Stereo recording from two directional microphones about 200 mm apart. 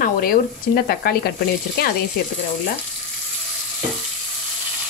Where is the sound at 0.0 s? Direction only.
45° left (ahead or behind).